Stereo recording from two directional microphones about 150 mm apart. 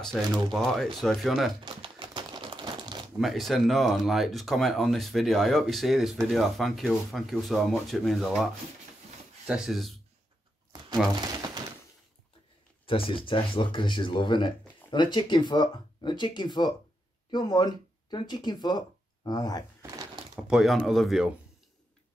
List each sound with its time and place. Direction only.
0.0 s speech: 5° left (ahead or behind)
1.6 s typewriter: 35° right (ahead or behind)
3.2 s speech: centre (ahead or behind)
9.5 s speech: centre (ahead or behind)
11.1 s crumpling: 30° right (ahead or behind)
12.8 s speech: 35° left (ahead or behind)
20.4 s speech: 5° right (ahead or behind)